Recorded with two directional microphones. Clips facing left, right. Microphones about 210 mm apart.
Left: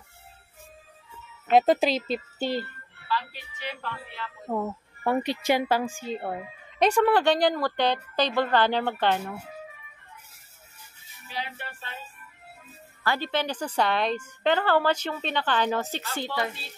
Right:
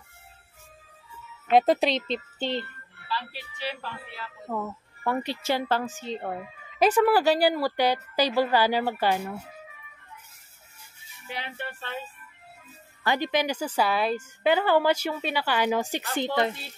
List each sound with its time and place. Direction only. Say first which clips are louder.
1.5 s a woman's voice: even; centre (ahead or behind)
3.1 s music: left 3 dB; 30° right (ahead or behind)
4.5 s a woman's voice: left 3 dB; 20° left (ahead or behind); by 9.4 s 10° right (ahead or behind)
13.0 s a woman's voice: right 2 dB; 15° right (ahead or behind)